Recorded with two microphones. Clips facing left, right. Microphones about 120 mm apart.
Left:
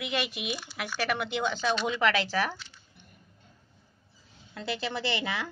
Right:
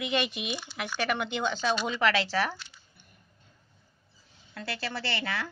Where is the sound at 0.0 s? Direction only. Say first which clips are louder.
Right 2 dB; 5° left (ahead or behind).